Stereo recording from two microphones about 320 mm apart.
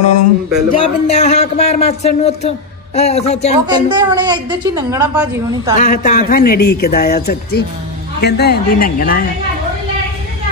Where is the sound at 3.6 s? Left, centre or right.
Centre.